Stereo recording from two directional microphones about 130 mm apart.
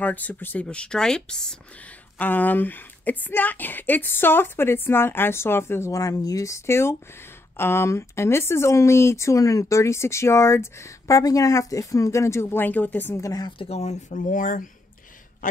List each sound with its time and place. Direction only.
0.0 s speech: 15° left (ahead or behind)
13.6 s speech: 55° left (ahead or behind); by 14.7 s 90° left